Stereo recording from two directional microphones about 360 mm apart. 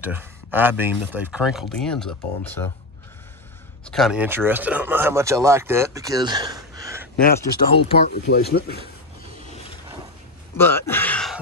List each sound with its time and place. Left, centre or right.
0.0 s speech: centre
3.8 s speech: centre
7.3 s speech: centre
8.1 s speech: left
10.6 s a sound: centre